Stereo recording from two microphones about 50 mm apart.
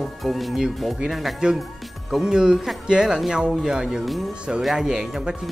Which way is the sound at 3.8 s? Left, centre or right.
Centre.